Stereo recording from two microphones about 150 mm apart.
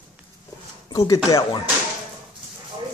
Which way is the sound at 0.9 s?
25° left (ahead or behind).